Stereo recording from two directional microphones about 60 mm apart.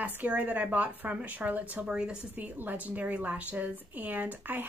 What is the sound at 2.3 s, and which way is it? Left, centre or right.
Speech, right.